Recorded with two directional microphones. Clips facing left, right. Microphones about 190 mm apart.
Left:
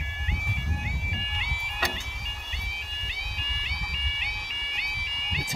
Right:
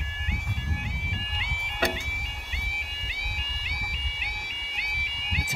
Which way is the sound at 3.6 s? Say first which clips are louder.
Even; 5° right (ahead or behind).